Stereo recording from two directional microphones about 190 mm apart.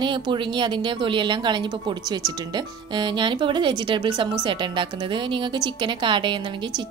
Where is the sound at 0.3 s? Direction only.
25° right (ahead or behind).